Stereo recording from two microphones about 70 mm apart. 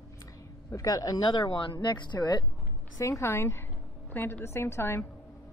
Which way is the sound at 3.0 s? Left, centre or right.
Left.